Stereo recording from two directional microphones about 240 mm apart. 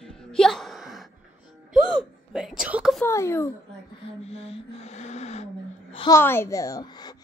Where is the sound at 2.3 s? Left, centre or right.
Centre.